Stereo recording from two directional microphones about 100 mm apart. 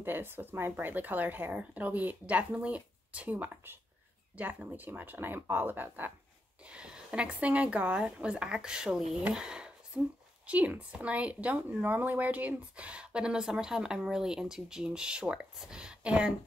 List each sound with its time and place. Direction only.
0.0 s speech: 20° right (ahead or behind)